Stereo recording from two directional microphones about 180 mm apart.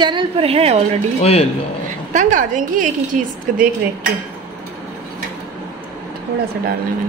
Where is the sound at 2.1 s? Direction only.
45° right (ahead or behind).